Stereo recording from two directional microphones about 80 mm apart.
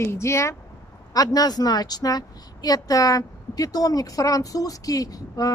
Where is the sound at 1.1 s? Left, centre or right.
Left.